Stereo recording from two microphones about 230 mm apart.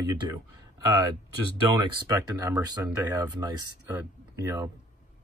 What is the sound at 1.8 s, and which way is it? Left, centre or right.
Speech, centre.